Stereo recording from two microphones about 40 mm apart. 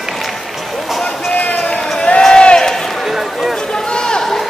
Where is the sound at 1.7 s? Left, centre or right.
Centre.